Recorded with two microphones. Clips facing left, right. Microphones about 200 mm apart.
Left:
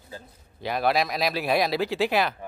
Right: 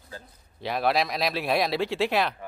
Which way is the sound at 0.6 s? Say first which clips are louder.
Left 1 dB; centre (ahead or behind).